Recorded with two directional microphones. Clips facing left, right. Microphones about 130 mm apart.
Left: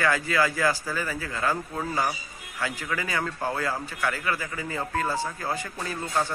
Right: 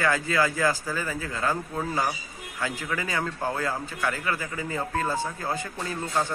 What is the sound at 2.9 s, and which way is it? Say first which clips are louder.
A man's voice: left 1 dB; 20° right (ahead or behind).